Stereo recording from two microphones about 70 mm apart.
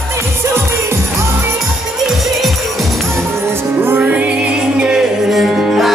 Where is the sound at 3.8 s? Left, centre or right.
Right.